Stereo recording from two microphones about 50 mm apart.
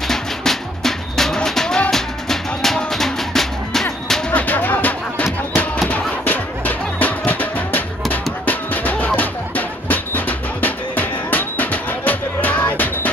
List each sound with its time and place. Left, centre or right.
0.1 s music: centre
4.3 s music: left